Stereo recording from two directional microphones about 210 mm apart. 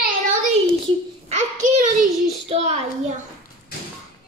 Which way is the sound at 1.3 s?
35° right (ahead or behind).